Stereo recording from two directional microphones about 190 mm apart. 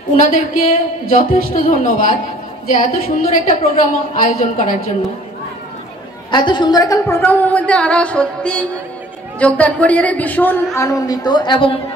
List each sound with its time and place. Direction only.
0.1 s a woman's voice: 40° left (ahead or behind)
6.3 s a woman's voice: 25° left (ahead or behind)